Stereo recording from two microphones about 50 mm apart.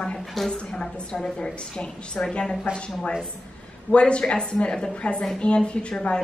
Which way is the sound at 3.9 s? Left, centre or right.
Left.